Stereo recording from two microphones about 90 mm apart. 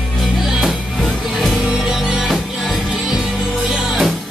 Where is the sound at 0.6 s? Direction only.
5° right (ahead or behind).